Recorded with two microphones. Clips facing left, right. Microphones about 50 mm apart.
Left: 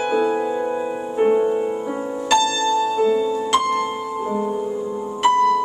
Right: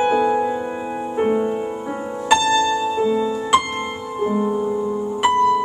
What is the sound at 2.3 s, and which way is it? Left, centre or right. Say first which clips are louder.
Music: right 2 dB; centre.